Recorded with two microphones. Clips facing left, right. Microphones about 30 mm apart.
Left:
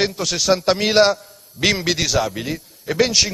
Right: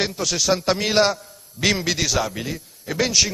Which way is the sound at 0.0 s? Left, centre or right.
Centre.